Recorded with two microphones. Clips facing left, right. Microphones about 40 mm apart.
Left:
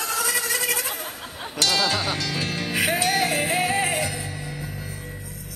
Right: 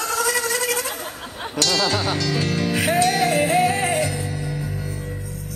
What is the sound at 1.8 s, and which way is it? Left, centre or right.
Music, centre.